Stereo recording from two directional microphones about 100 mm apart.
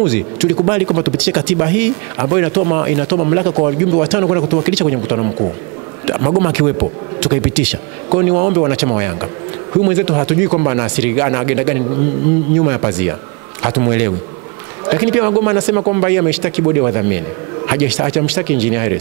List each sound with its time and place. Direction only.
0.0 s speech: 10° right (ahead or behind)